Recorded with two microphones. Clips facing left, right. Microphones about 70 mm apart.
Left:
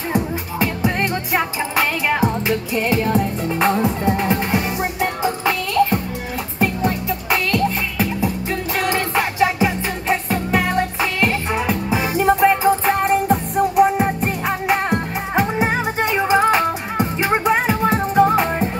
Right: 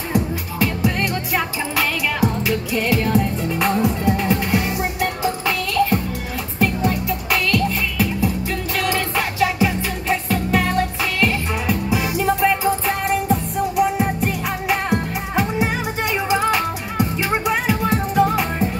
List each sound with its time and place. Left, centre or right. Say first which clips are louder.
0.1 s music: even; left